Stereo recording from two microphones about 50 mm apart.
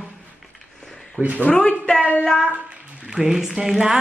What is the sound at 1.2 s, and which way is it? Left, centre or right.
Speech, right.